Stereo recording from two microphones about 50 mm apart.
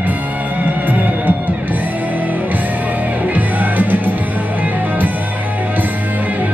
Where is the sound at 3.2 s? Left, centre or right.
Right.